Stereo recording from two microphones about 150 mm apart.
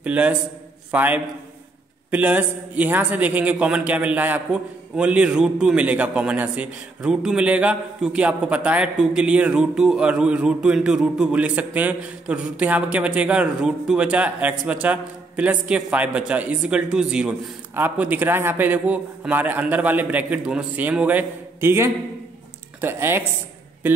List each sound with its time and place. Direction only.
0.0 s a man's voice: 10° right (ahead or behind)